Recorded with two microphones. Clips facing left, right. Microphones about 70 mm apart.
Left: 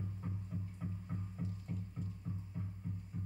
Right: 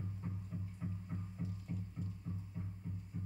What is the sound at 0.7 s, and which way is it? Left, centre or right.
Music, centre.